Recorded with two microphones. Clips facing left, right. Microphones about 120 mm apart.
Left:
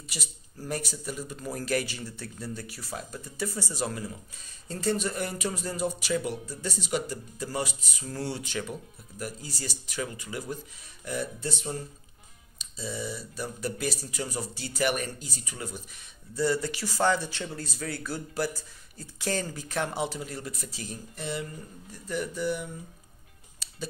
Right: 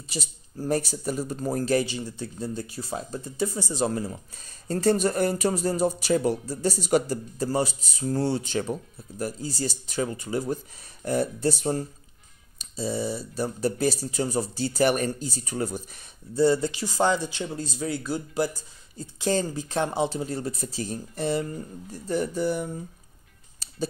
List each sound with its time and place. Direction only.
0.1 s speech: 30° right (ahead or behind)
1.6 s speech: 25° right (ahead or behind)
4.6 s speech: 40° right (ahead or behind)
7.4 s speech: 30° right (ahead or behind)
16.3 s speech: 25° right (ahead or behind)
23.6 s a sound: 35° right (ahead or behind)